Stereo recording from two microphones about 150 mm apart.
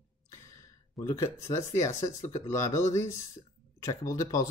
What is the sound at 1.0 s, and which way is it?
Speech, 20° left (ahead or behind).